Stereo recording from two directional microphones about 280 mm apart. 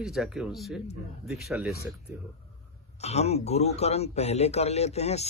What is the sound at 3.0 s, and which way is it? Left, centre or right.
Speech, left.